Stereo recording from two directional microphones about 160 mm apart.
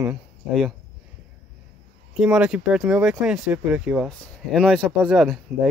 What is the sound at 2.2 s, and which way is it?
Speech, 5° right (ahead or behind).